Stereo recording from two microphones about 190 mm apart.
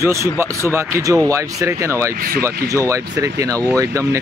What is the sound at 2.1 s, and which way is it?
Speech, 50° right (ahead or behind).